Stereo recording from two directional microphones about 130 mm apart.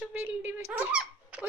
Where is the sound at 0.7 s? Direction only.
10° right (ahead or behind).